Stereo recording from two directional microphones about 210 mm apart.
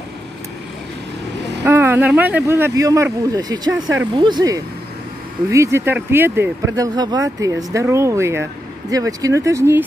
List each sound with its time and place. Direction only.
1.6 s speech: 10° right (ahead or behind)